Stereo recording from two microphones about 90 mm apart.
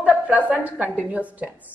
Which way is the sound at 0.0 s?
15° right (ahead or behind).